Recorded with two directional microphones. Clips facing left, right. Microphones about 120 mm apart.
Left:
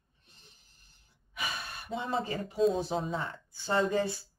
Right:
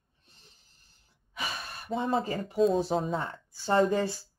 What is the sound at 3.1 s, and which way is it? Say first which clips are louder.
Speech: right 3 dB; 40° right (ahead or behind).